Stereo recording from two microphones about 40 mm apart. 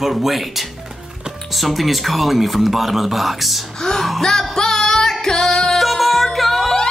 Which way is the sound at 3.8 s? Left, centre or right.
Centre.